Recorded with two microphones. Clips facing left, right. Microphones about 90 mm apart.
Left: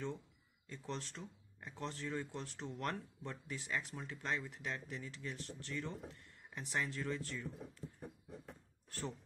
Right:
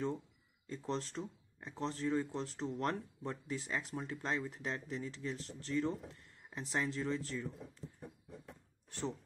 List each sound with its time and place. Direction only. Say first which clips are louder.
0.7 s speech: right 6 dB; 35° right (ahead or behind)